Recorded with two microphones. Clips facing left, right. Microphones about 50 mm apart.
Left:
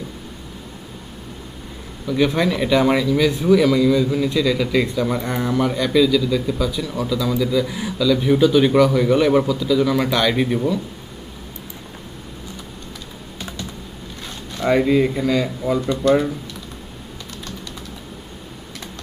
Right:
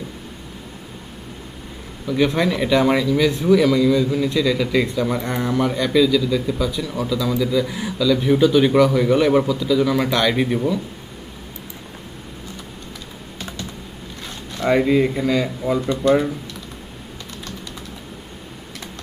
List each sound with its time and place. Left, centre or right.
2.0 s speech: centre
13.4 s computer keyboard: centre
14.2 s zipper: centre
14.8 s speech: centre